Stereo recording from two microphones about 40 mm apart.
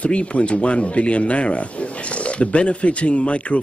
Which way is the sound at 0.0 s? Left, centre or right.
Left.